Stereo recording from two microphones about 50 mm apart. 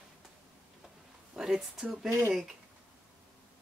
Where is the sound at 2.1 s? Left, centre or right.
Right.